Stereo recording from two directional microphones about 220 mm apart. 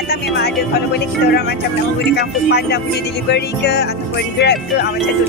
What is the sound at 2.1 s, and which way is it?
Speech, 50° left (ahead or behind).